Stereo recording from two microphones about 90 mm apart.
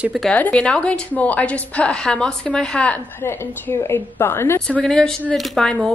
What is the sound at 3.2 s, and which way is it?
A woman's voice, 25° left (ahead or behind).